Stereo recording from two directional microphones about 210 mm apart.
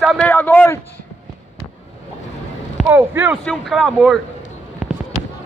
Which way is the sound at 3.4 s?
Centre (ahead or behind).